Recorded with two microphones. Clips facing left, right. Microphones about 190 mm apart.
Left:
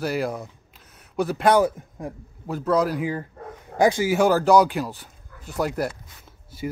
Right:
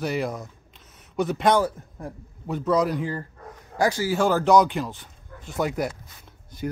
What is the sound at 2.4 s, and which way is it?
Speech, centre (ahead or behind).